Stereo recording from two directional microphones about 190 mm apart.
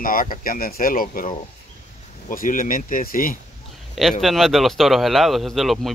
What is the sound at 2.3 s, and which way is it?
Speech, 45° left (ahead or behind).